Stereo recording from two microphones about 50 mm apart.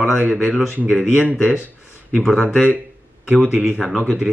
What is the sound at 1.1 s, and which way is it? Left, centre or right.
Speech, right.